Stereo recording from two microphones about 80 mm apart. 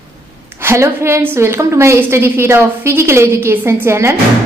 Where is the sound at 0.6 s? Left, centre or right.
Right.